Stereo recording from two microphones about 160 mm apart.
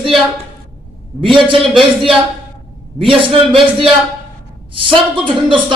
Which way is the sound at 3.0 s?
30° right (ahead or behind).